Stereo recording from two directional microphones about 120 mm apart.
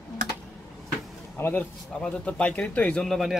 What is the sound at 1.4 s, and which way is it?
A man's voice, 20° left (ahead or behind).